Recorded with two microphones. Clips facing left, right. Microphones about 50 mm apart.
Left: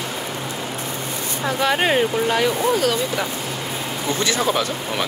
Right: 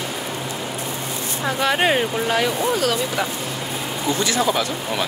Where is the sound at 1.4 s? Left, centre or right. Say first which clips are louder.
Even; centre.